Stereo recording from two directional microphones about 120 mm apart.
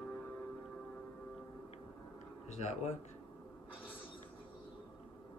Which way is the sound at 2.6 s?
75° left (ahead or behind).